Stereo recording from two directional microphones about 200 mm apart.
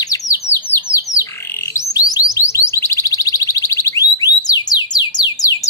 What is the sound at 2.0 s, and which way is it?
Music, 15° left (ahead or behind).